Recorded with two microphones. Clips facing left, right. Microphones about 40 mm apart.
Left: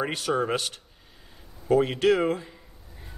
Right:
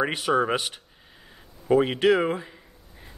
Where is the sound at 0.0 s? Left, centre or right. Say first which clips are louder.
Right 3 dB; centre.